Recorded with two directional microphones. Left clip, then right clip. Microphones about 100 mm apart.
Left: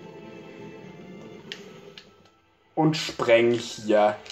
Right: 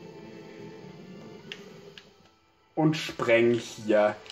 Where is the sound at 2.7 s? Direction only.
25° right (ahead or behind).